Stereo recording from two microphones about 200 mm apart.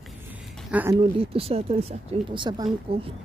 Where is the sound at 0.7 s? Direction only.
10° right (ahead or behind).